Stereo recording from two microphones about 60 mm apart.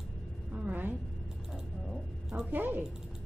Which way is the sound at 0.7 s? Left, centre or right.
Right.